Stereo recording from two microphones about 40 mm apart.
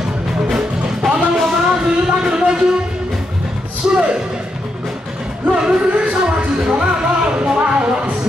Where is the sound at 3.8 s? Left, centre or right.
Right.